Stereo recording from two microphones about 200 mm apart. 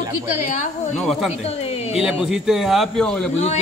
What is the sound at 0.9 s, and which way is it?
Speech, centre (ahead or behind).